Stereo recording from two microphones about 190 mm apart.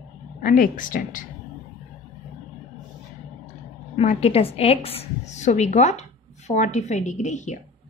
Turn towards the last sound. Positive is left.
turn(degrees=40)  # may be behind; listen again after turning